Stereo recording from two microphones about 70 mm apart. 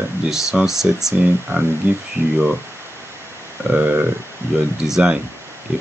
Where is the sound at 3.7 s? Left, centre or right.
Centre.